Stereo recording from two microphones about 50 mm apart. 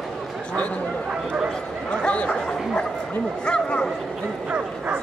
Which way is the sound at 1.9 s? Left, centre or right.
Left.